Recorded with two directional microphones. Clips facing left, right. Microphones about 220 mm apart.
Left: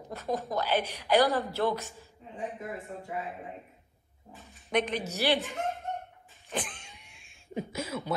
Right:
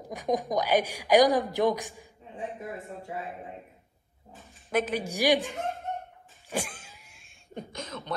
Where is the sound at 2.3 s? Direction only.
30° right (ahead or behind).